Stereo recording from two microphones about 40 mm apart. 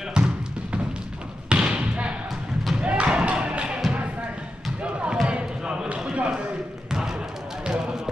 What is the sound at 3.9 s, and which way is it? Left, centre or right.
Basketball bounce, right.